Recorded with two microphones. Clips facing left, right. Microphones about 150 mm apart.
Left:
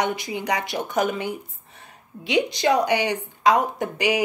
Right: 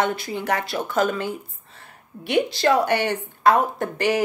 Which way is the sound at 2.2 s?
55° right (ahead or behind).